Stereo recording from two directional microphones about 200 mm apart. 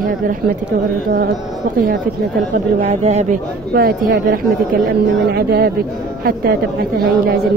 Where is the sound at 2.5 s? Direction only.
35° right (ahead or behind).